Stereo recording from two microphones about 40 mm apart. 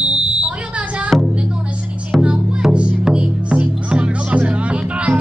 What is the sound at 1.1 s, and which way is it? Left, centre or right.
Music, centre.